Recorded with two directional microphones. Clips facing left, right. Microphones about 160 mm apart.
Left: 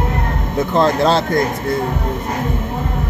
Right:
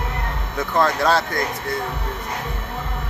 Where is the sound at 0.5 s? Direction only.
25° left (ahead or behind).